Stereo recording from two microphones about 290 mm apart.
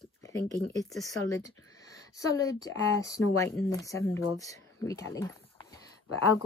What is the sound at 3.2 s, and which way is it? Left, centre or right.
Speech, left.